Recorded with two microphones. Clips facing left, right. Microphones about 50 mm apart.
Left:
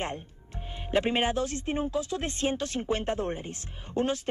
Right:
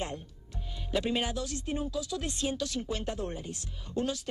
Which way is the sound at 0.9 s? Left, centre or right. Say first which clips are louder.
Left 5 dB; left.